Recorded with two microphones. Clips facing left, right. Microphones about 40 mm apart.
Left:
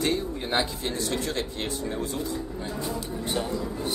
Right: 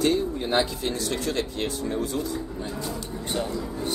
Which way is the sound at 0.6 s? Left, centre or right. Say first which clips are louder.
Right 2 dB; left.